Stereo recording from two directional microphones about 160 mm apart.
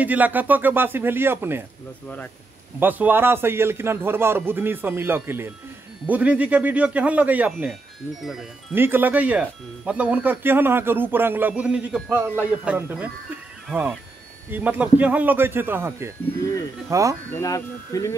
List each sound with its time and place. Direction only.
0.0 s speech: 10° right (ahead or behind)
2.8 s speech: 10° right (ahead or behind)
8.7 s speech: 15° right (ahead or behind)
14.5 s speech: 10° right (ahead or behind)
17.3 s speech: 15° left (ahead or behind)